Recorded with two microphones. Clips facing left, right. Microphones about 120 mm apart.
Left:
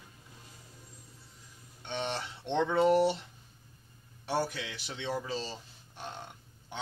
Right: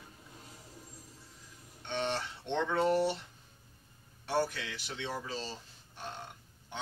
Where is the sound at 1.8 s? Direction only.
20° left (ahead or behind).